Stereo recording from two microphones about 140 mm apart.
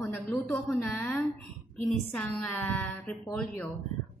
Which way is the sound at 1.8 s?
5° left (ahead or behind).